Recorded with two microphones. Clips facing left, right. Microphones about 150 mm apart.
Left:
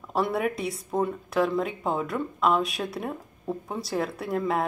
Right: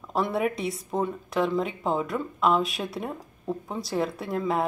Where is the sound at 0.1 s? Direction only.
Centre (ahead or behind).